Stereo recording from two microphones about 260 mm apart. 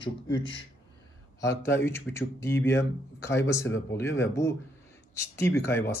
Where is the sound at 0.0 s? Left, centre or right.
Centre.